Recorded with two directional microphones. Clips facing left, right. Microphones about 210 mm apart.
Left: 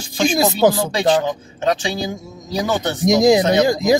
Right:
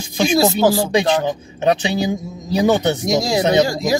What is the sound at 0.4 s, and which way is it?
Speech, 20° left (ahead or behind).